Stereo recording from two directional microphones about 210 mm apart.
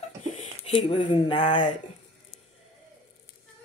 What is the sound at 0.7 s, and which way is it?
Speech, 25° left (ahead or behind).